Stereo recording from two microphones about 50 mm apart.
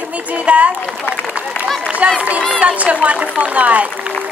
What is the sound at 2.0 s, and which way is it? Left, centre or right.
A woman's voice, right.